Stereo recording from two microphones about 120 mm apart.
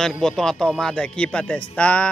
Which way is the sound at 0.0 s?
5° left (ahead or behind).